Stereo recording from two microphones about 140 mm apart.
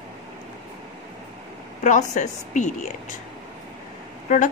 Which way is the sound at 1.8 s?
60° left (ahead or behind).